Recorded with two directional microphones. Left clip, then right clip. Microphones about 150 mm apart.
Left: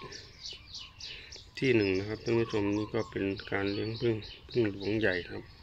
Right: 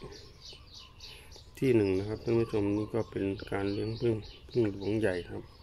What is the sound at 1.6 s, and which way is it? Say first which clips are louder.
Speech: even; 15° right (ahead or behind).